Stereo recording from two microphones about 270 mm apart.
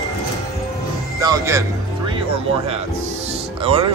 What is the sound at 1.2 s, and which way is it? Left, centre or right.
Speech, centre.